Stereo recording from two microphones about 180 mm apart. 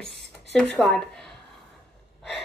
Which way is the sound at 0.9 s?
Centre (ahead or behind).